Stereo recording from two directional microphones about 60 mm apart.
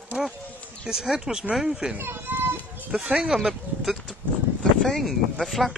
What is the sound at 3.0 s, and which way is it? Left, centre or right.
Speech, centre.